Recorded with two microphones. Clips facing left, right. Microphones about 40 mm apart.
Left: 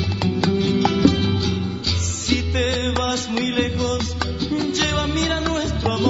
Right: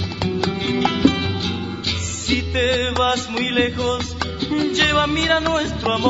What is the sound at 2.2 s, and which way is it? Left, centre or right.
Music, right.